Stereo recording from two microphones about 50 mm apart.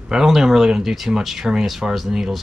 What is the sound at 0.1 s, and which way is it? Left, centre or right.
Speech, centre.